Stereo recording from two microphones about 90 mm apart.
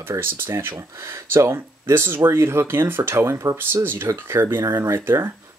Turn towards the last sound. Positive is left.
turn(degrees=-25)  # may be behind; listen again after turning